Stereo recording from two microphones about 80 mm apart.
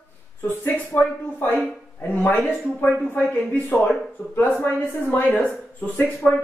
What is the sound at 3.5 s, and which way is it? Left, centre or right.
A man's voice, centre.